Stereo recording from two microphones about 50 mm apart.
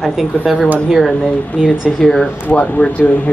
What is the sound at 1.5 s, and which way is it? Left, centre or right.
Speech, centre.